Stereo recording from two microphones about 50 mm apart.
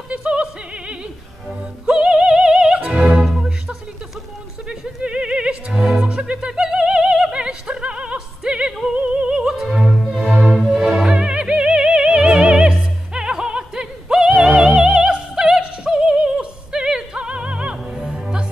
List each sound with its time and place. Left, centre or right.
0.1 s a sound: right
1.9 s opera: centre
3.3 s music: centre
4.6 s music: centre
8.9 s music: right